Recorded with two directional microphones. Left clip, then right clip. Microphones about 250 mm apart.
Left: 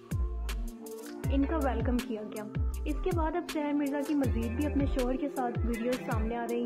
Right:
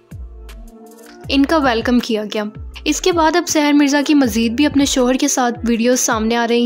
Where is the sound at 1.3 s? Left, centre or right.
Left.